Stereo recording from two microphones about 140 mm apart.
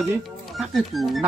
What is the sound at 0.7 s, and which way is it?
Speech, centre (ahead or behind).